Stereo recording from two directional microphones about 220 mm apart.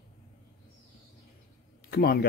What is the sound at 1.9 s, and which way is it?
Speech, 45° left (ahead or behind).